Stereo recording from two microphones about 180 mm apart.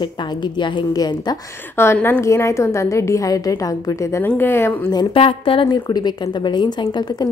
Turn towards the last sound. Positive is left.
turn(degrees=25)  # may be behind; listen again after turning